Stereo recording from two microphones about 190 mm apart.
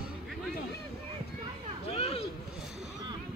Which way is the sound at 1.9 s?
30° left (ahead or behind).